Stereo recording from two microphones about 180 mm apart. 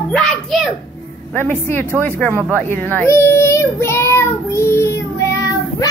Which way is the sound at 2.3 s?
15° right (ahead or behind).